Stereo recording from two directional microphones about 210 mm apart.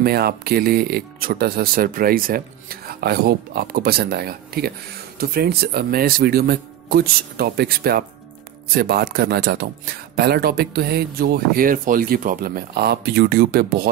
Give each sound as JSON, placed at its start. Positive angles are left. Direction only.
{"t": 0.0, "sound": "speech", "side_deg": -50}